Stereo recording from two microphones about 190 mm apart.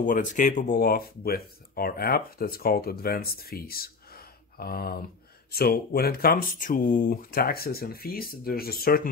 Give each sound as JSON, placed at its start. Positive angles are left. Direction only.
{"t": 0.0, "sound": "speech", "side_deg": 45}